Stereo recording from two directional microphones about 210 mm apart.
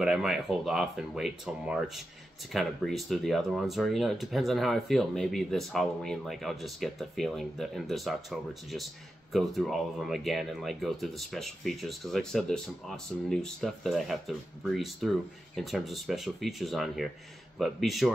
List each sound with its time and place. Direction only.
0.0 s speech: centre (ahead or behind)